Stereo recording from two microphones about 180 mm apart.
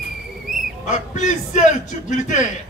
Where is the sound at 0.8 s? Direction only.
45° left (ahead or behind).